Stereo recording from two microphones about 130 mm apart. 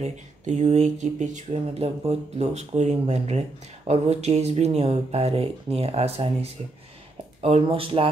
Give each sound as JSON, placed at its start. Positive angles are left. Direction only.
{"t": 0.0, "sound": "speech", "side_deg": -60}